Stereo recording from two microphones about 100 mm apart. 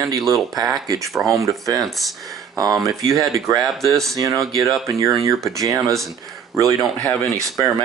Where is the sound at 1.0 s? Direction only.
Centre (ahead or behind).